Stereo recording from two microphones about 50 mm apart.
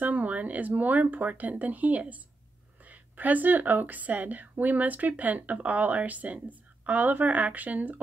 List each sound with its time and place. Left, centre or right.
0.0 s a woman's voice: right